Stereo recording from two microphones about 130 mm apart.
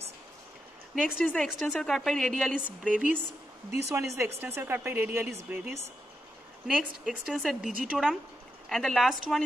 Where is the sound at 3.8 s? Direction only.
20° right (ahead or behind).